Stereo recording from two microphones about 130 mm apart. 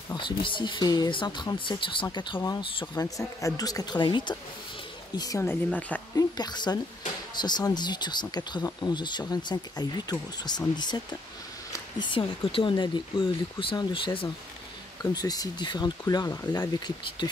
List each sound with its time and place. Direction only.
0.1 s speech: 40° left (ahead or behind)
5.4 s speech: 15° left (ahead or behind)
6.1 s speech: 30° left (ahead or behind)
12.0 s speech: 40° left (ahead or behind)
15.1 s speech: 30° left (ahead or behind)